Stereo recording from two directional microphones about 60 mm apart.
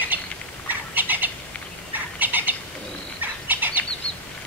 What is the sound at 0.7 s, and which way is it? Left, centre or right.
Cat, right.